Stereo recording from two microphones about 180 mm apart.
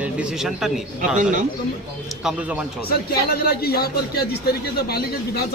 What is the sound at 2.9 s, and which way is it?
Speech, 60° left (ahead or behind).